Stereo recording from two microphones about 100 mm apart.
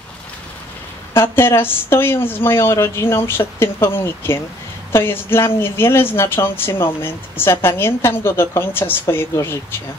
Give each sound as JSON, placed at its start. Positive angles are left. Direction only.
{"t": 1.1, "sound": "speech", "side_deg": 25}